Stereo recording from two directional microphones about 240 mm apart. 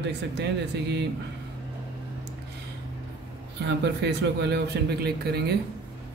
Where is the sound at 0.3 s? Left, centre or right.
Right.